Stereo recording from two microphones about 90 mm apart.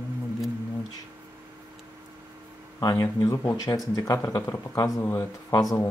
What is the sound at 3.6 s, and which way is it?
Speech, 45° left (ahead or behind).